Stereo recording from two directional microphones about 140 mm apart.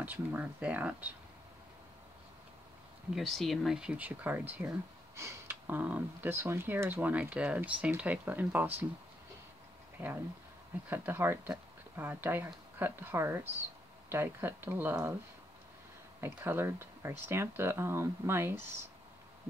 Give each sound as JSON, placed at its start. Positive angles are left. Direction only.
{"t": 0.0, "sound": "speech", "side_deg": -10}
{"t": 3.2, "sound": "speech", "side_deg": 0}
{"t": 10.0, "sound": "speech", "side_deg": -10}
{"t": 16.2, "sound": "speech", "side_deg": -15}